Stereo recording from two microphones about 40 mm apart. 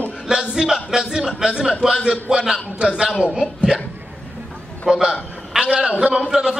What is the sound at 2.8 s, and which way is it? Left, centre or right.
Speech, right.